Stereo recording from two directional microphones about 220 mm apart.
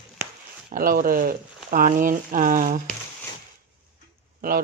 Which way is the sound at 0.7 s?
40° right (ahead or behind).